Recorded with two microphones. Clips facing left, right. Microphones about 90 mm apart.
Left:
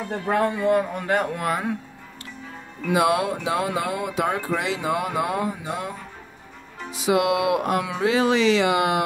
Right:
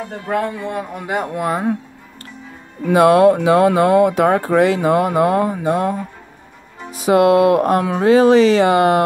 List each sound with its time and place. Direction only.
0.6 s speech: 5° left (ahead or behind)
0.9 s speech: 15° right (ahead or behind)
2.9 s speech: 55° right (ahead or behind)